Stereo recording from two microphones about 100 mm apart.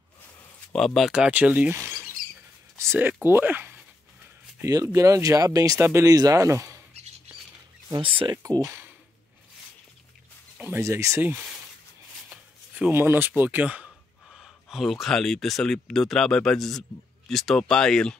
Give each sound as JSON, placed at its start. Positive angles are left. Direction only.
{"t": 0.7, "sound": "speech", "side_deg": 0}
{"t": 4.8, "sound": "speech", "side_deg": -30}
{"t": 5.8, "sound": "speech", "side_deg": -25}
{"t": 6.0, "sound": "speech", "side_deg": -35}
{"t": 8.0, "sound": "speech", "side_deg": -60}
{"t": 8.4, "sound": "speech", "side_deg": -35}
{"t": 10.8, "sound": "speech", "side_deg": -30}
{"t": 12.7, "sound": "speech", "side_deg": -20}
{"t": 14.3, "sound": "speech", "side_deg": 0}